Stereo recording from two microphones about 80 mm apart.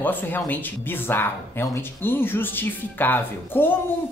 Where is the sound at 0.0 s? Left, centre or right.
Left.